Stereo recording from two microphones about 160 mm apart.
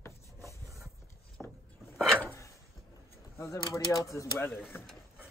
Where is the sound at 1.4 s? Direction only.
5° right (ahead or behind).